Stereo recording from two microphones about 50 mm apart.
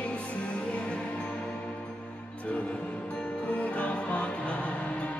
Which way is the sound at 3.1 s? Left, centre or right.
Left.